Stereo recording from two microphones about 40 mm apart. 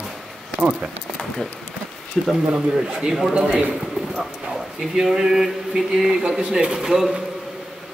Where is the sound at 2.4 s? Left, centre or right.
Right.